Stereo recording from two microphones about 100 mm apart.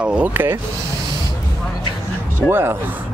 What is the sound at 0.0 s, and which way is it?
Speech, 15° right (ahead or behind).